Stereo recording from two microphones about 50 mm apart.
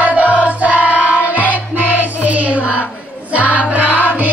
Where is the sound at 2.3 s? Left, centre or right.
Right.